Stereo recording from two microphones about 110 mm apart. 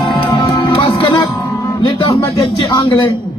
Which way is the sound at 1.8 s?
45° left (ahead or behind).